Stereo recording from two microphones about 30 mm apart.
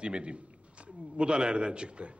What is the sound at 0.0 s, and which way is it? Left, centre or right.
A man's voice, right.